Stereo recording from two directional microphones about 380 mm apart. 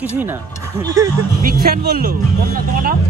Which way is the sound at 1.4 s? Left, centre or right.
Right.